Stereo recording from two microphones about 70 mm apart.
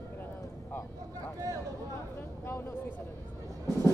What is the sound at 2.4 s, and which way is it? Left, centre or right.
Speech, left.